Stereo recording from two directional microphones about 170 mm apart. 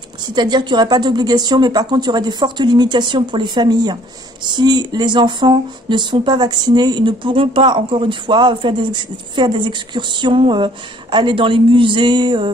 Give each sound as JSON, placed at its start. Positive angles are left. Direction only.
{"t": 0.3, "sound": "speech", "side_deg": -25}